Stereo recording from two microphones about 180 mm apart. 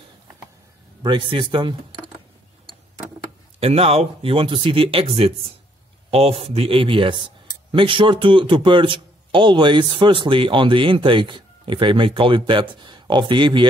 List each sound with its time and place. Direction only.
1.0 s speech: 25° right (ahead or behind)
3.5 s speech: 35° right (ahead or behind)